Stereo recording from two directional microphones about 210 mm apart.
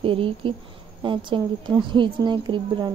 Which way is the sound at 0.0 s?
25° right (ahead or behind).